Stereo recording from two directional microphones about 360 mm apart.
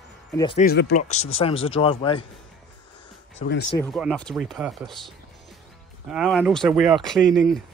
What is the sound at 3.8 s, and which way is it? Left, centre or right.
Speech, centre.